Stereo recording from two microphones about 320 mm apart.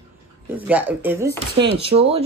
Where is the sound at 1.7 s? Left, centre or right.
Centre.